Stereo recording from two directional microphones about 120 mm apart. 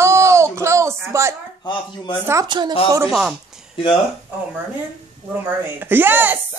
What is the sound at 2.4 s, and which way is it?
Speech, 40° right (ahead or behind).